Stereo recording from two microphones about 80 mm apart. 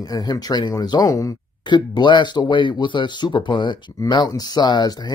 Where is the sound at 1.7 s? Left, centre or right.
Left.